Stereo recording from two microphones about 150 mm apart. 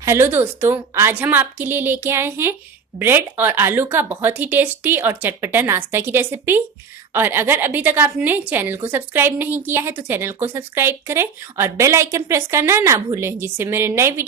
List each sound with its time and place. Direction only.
0.0 s a woman's voice: 15° right (ahead or behind)